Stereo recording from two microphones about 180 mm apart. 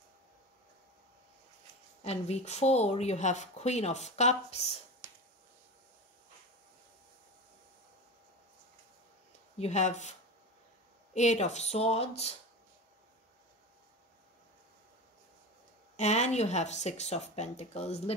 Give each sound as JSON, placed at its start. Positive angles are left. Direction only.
{"t": 2.0, "sound": "speech", "side_deg": 35}
{"t": 5.0, "sound": "a sound", "side_deg": -15}
{"t": 9.6, "sound": "speech", "side_deg": 40}
{"t": 11.1, "sound": "speech", "side_deg": 40}
{"t": 16.0, "sound": "speech", "side_deg": 40}